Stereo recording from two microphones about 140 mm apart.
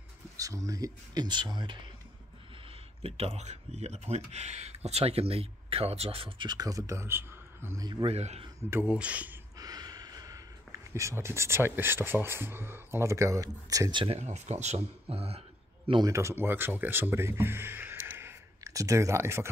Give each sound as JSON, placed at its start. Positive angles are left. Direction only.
{"t": 0.4, "sound": "speech", "side_deg": -25}
{"t": 3.0, "sound": "speech", "side_deg": -45}
{"t": 7.8, "sound": "speech", "side_deg": -30}
{"t": 8.1, "sound": "speech", "side_deg": -50}
{"t": 8.6, "sound": "speech", "side_deg": -15}
{"t": 9.6, "sound": "speech", "side_deg": -30}
{"t": 14.0, "sound": "speech", "side_deg": -50}
{"t": 16.1, "sound": "speech", "side_deg": -20}